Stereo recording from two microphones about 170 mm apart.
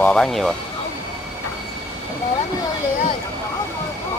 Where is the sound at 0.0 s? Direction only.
5° left (ahead or behind).